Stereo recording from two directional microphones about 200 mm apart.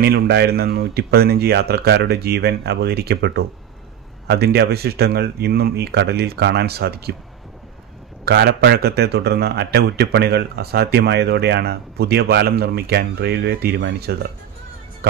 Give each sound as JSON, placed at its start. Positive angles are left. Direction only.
{"t": 0.0, "sound": "a man's voice", "side_deg": -55}
{"t": 8.3, "sound": "a man's voice", "side_deg": -55}